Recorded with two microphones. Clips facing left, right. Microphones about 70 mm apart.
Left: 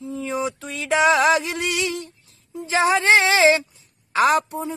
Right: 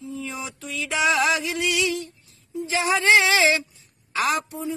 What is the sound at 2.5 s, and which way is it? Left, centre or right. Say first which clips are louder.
Speech: left 4 dB; left.